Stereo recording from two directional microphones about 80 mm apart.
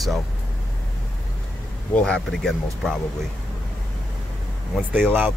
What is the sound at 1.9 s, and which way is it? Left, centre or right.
Speech, centre.